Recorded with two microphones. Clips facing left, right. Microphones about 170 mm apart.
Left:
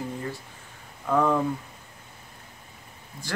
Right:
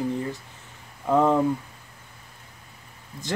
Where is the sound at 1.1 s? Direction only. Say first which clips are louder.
Right 3 dB; 20° right (ahead or behind).